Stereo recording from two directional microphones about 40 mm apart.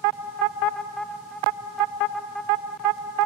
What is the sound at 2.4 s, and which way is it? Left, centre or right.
Vehicle, left.